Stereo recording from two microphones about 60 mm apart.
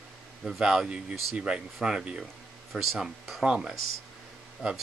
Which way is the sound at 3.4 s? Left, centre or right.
Centre.